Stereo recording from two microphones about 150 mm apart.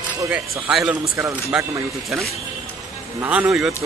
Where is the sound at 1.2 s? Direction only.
15° right (ahead or behind).